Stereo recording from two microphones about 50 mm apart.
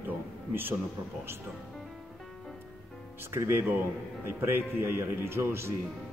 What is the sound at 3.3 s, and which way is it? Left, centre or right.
Speech, right.